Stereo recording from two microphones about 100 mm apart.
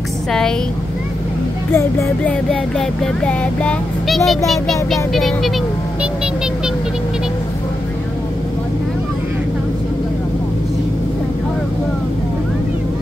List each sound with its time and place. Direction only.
0.3 s speech: 5° left (ahead or behind)
1.7 s speech: 25° left (ahead or behind)
2.2 s music: 10° left (ahead or behind)
4.1 s speech: centre (ahead or behind)